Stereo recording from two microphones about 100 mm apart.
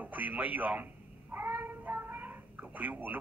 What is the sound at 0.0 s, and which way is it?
Speech, 15° right (ahead or behind).